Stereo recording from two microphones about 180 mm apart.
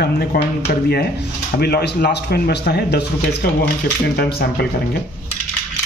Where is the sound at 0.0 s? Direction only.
60° left (ahead or behind).